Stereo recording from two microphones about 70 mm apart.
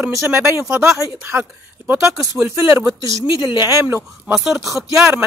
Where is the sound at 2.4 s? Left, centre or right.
Right.